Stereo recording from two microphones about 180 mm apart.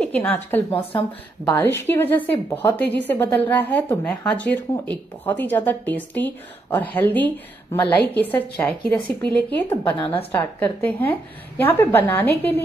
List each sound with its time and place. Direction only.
0.0 s a woman's voice: 10° left (ahead or behind)
9.9 s a woman's voice: 25° left (ahead or behind)
10.3 s a woman's voice: 10° left (ahead or behind)